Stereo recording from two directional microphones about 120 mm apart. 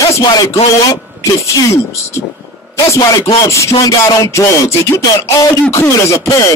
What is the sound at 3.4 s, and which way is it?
Speech, 25° left (ahead or behind).